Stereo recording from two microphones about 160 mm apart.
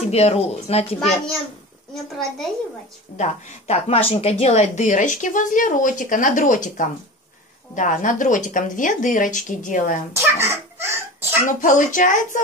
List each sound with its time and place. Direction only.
0.1 s a child's voice: 40° left (ahead or behind)
3.2 s a woman's voice: 40° left (ahead or behind)
10.1 s a sound: 15° right (ahead or behind)
11.4 s speech: 55° left (ahead or behind)